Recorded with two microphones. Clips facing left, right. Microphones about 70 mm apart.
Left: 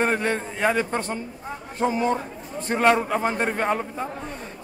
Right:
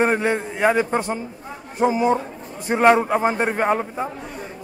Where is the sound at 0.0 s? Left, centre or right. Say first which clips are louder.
Right 4 dB; centre.